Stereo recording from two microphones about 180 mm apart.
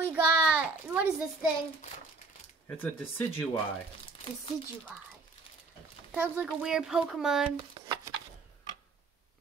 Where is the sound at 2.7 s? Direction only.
10° left (ahead or behind).